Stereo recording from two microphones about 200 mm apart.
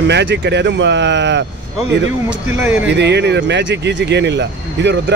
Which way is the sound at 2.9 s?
55° right (ahead or behind).